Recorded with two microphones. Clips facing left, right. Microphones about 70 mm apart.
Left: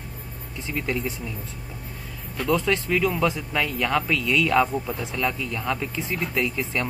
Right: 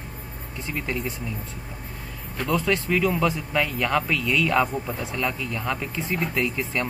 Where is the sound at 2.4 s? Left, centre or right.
Right.